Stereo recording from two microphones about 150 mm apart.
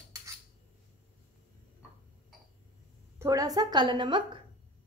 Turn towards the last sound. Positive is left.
turn(degrees=-30)  # may be behind; listen again after turning